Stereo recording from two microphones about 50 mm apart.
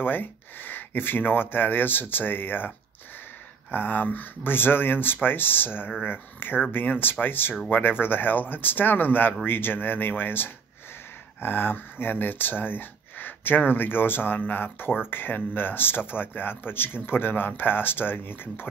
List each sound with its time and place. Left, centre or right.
0.0 s speech: left
3.7 s speech: left